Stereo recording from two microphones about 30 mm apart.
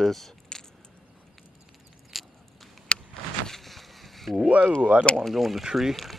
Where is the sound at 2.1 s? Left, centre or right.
Centre.